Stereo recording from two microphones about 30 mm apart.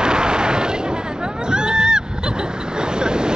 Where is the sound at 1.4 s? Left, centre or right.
Right.